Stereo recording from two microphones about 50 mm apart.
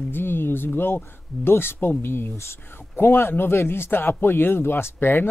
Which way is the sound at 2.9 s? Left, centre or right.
Left.